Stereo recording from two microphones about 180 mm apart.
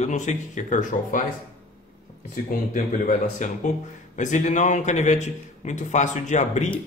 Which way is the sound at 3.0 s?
40° left (ahead or behind).